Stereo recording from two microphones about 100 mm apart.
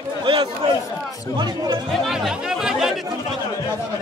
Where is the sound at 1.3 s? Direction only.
40° right (ahead or behind).